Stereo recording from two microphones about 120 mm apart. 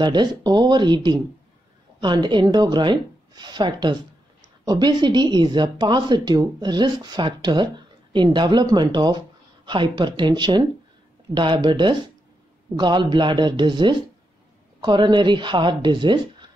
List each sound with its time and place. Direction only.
0.0 s speech: 40° right (ahead or behind)